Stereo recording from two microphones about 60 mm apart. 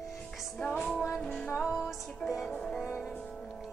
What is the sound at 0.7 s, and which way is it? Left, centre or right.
Music, centre.